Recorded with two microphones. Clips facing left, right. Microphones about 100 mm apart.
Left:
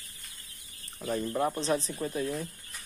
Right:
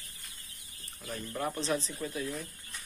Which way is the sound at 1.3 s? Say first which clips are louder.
Left 3 dB; 20° left (ahead or behind).